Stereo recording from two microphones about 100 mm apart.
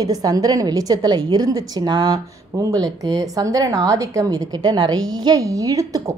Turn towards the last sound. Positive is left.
turn(degrees=-35)  # may be behind; listen again after turning